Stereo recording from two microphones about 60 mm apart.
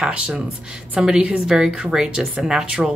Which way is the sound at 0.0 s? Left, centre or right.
Centre.